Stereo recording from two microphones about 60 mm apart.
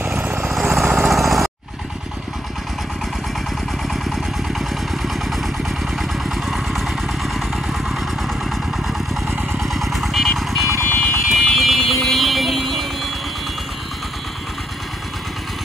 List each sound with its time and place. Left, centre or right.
0.0 s vehicle: right
0.6 s jackhammer: centre
3.9 s vehicle: centre